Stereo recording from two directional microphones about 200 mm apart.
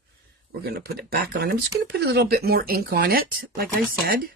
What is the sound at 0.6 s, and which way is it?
Speech, 50° right (ahead or behind).